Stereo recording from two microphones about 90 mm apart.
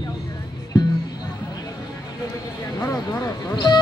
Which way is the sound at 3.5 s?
50° left (ahead or behind).